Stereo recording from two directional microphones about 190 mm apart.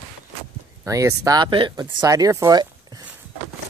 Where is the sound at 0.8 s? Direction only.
15° right (ahead or behind).